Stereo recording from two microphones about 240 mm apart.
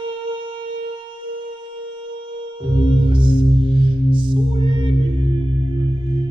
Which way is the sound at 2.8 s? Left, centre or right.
Centre.